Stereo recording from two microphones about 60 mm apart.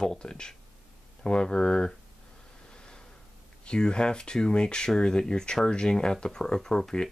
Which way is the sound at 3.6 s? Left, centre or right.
Centre.